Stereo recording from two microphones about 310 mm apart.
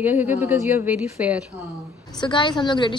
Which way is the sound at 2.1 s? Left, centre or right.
Centre.